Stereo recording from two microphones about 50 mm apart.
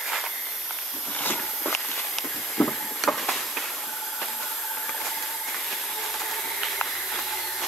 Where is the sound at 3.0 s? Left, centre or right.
Centre.